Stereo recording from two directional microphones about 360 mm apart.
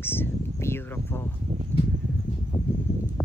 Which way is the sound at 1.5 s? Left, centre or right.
Centre.